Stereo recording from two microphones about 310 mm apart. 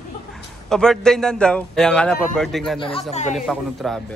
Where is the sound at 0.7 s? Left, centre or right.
Centre.